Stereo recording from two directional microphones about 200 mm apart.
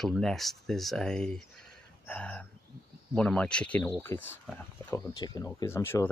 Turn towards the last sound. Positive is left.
turn(degrees=10)  # may be behind; listen again after turning